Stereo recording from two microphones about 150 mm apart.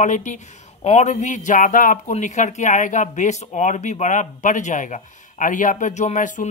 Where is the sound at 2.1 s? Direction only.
55° left (ahead or behind).